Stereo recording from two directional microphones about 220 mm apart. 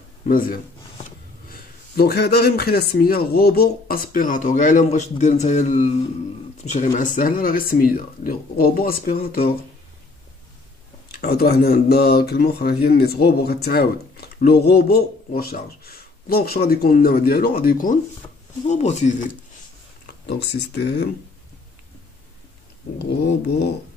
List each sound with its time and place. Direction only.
0.3 s speech: 40° left (ahead or behind)
11.1 s speech: 45° left (ahead or behind)
20.2 s speech: 50° left (ahead or behind)
22.9 s speech: 45° left (ahead or behind)